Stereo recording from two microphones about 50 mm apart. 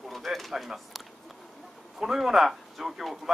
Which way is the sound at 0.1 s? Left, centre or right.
Centre.